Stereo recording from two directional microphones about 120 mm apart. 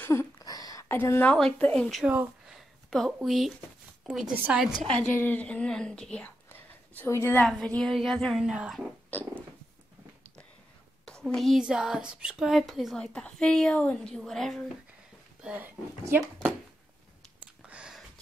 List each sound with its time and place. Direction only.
0.0 s a sound: 20° left (ahead or behind)
0.4 s a sound: 30° left (ahead or behind)
0.9 s speech: 20° left (ahead or behind)
2.0 s a woman's voice: 10° right (ahead or behind)
4.8 s speech: 10° left (ahead or behind)
7.4 s a woman's voice: 5° left (ahead or behind)
9.1 s speech: 15° left (ahead or behind)
11.2 s a woman's voice: 5° left (ahead or behind)
15.4 s speech: 10° right (ahead or behind)
17.6 s a sound: 10° right (ahead or behind)